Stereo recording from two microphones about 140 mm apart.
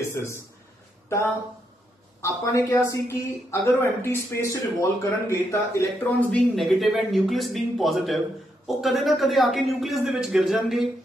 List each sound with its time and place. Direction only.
0.1 s speech: 20° left (ahead or behind)
1.0 s a sound: 20° left (ahead or behind)
2.2 s speech: 20° left (ahead or behind)
6.5 s a man's voice: centre (ahead or behind)